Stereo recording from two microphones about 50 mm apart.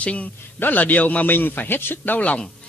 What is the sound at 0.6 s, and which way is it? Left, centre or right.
Speech, left.